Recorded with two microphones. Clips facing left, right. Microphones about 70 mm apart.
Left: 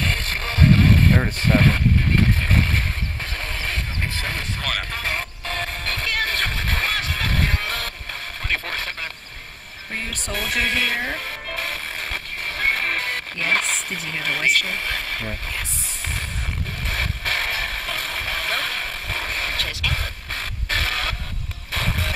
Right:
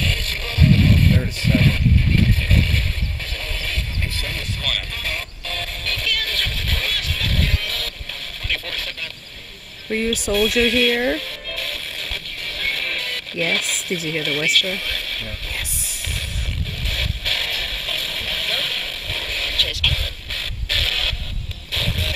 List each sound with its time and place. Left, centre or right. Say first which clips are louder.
0.0 s music: left 1 dB; left
1.4 s vehicle: even; left
8.5 s radio: left 2 dB; left
10.3 s music: right 5 dB; left
14.1 s speech: left 2 dB; left
16.8 s a sound: left 3 dB; left